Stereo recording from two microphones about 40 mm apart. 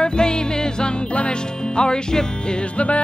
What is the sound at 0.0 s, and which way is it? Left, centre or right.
Music, left.